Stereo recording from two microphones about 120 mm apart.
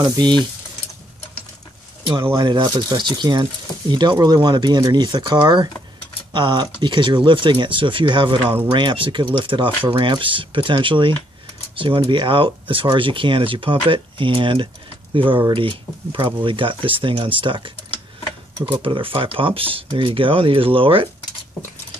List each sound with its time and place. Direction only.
0.0 s speech: 40° right (ahead or behind)
2.3 s speech: 40° right (ahead or behind)